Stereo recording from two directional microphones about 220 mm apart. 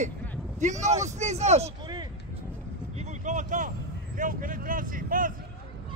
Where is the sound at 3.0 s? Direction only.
35° right (ahead or behind).